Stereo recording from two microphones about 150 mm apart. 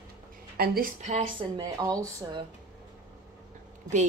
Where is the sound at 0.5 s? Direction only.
85° right.